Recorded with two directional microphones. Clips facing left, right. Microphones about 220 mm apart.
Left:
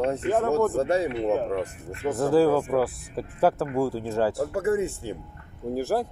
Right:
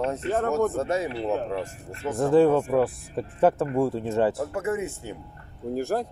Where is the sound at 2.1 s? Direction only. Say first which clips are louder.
Right 1 dB; centre (ahead or behind).